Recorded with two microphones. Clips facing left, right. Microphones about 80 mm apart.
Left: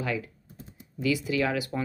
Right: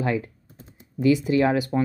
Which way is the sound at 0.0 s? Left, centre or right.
Right.